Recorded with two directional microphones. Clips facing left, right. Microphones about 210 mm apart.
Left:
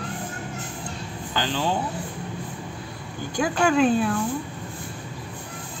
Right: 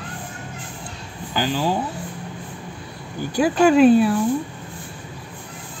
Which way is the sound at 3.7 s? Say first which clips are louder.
Right 7 dB; 10° right (ahead or behind).